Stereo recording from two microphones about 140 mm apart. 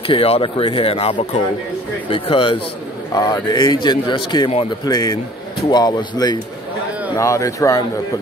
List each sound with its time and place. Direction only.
0.0 s speech: 40° left (ahead or behind)
3.1 s a man's voice: 30° left (ahead or behind)